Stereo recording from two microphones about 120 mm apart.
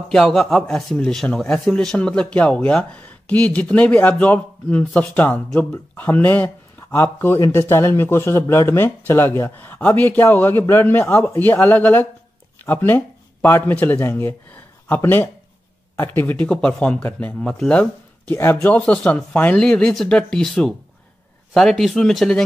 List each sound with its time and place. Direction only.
0.1 s a man's voice: 5° left (ahead or behind); by 7.3 s 20° left (ahead or behind)
7.3 s a man's voice: 30° left (ahead or behind); by 17.8 s 10° left (ahead or behind)
18.3 s a man's voice: 20° left (ahead or behind)